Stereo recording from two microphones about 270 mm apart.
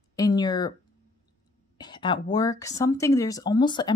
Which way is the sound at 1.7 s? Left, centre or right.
Centre.